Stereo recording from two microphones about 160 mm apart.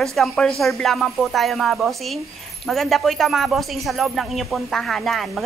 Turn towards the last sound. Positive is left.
turn(degrees=0)  # may be behind; listen again after turning